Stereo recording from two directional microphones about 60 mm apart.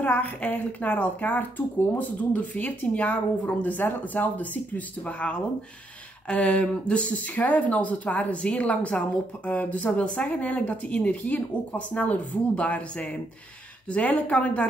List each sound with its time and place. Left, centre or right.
0.0 s speech: left